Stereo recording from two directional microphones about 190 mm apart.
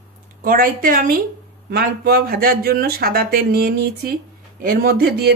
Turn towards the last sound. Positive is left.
turn(degrees=-55)  # may be behind; listen again after turning